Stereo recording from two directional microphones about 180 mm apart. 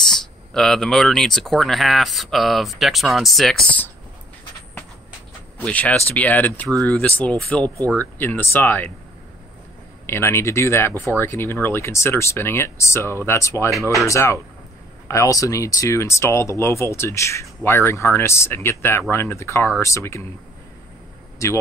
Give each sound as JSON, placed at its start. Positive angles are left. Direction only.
{"t": 0.0, "sound": "speech", "side_deg": 5}
{"t": 5.6, "sound": "speech", "side_deg": 5}
{"t": 10.0, "sound": "speech", "side_deg": 15}
{"t": 21.4, "sound": "speech", "side_deg": 15}